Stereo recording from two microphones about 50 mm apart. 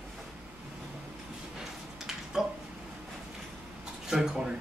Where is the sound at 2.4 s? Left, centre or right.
Centre.